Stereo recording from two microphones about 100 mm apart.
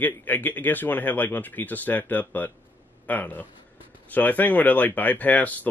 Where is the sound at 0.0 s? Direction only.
15° left (ahead or behind).